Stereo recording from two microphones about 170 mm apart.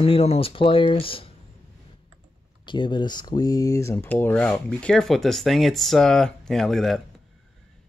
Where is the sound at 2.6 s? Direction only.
30° left (ahead or behind); by 7.0 s centre (ahead or behind).